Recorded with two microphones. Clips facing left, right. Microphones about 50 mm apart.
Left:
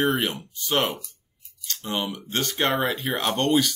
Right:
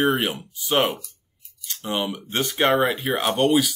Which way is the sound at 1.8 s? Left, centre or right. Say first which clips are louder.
Right 3 dB; right.